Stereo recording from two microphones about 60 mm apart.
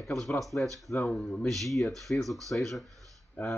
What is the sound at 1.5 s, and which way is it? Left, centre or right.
Speech, centre.